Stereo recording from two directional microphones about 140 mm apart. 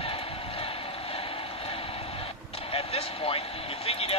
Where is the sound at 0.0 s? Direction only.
40° left (ahead or behind).